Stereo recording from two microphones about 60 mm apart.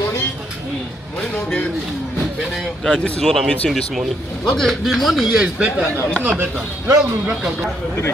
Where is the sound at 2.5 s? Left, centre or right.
Centre.